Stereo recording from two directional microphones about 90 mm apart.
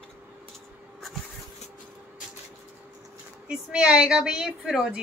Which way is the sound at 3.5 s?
10° right (ahead or behind).